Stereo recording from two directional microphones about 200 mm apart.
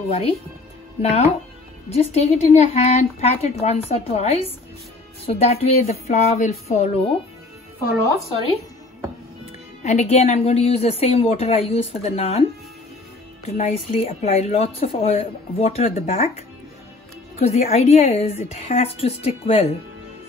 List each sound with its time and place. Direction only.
1.0 s speech: 30° left (ahead or behind)
9.8 s speech: 35° left (ahead or behind)
13.5 s speech: 30° left (ahead or behind)